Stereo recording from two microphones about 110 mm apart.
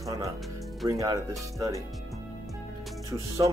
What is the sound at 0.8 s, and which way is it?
Speech, 30° right (ahead or behind).